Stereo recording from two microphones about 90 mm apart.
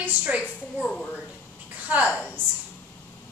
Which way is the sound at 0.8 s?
15° left (ahead or behind).